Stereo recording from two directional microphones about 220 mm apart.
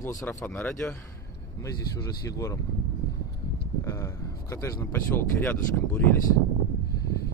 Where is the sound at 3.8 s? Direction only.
15° left (ahead or behind).